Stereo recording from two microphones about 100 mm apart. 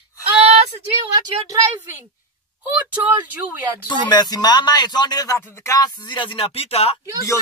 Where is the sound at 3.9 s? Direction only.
45° left (ahead or behind).